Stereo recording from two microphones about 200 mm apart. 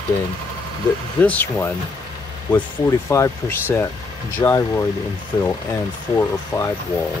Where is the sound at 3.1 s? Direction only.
15° left (ahead or behind).